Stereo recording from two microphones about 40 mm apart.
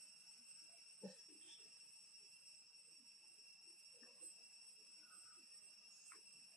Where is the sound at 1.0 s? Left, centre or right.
Centre.